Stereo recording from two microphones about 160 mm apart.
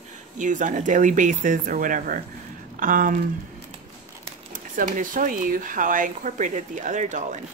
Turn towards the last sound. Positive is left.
turn(degrees=-50)  # may be behind; listen again after turning